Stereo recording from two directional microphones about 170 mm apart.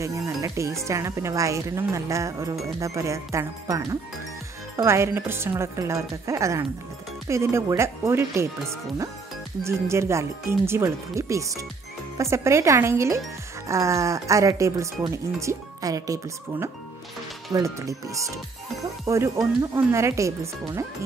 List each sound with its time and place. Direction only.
0.0 s speech: 15° right (ahead or behind)